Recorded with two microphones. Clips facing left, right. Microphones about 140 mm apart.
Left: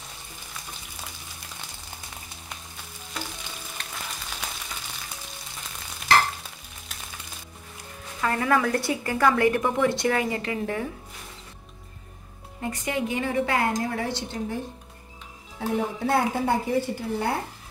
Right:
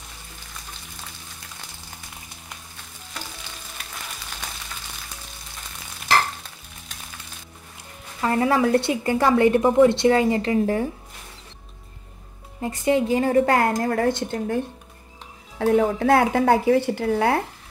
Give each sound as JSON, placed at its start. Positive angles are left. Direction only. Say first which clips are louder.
{"t": 8.2, "sound": "a woman's voice", "louder": "right 4 dB", "side_deg": -25}
{"t": 12.6, "sound": "a woman's voice", "louder": "right 7 dB", "side_deg": -30}
{"t": 15.6, "sound": "speech", "louder": "right 8 dB", "side_deg": -90}